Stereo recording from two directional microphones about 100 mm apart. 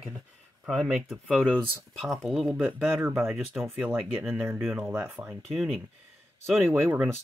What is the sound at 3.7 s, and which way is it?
Speech, 20° right (ahead or behind).